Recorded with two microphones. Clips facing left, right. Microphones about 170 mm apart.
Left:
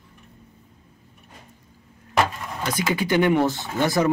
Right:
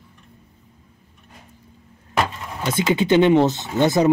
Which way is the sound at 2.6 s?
25° right (ahead or behind).